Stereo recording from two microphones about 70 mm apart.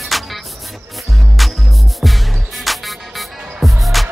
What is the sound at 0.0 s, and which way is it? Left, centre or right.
Music, centre.